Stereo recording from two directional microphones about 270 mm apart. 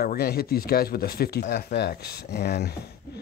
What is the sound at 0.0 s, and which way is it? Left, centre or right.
Speech, left.